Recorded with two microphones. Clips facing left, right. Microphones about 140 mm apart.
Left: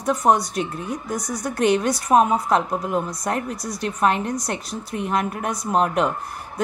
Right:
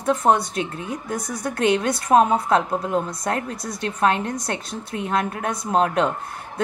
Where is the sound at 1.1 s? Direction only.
55° right (ahead or behind).